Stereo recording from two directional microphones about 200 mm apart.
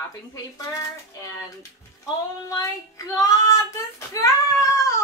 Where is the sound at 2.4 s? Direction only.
15° left (ahead or behind).